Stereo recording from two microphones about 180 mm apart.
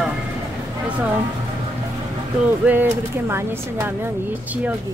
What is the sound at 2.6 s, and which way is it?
Speech, 10° right (ahead or behind).